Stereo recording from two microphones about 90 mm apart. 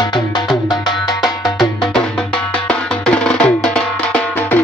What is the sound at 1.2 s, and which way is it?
Music, 5° left (ahead or behind).